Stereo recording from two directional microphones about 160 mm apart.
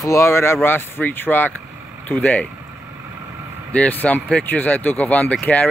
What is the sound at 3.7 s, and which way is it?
Speech, 10° left (ahead or behind).